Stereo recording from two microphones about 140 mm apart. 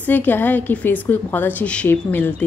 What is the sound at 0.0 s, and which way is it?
A woman's voice, 10° left (ahead or behind).